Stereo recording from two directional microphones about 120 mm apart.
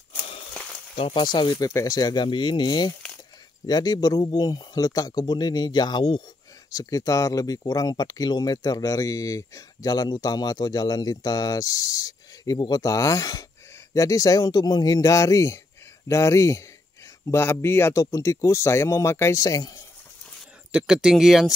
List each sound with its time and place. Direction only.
0.9 s speech: 45° left (ahead or behind)
6.7 s speech: 30° left (ahead or behind)
20.7 s speech: 5° right (ahead or behind)